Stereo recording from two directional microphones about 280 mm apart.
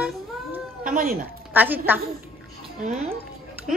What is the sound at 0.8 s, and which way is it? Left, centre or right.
Speech, right.